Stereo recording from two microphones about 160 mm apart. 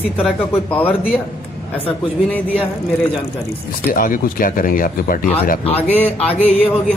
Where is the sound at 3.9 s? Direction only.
60° left (ahead or behind).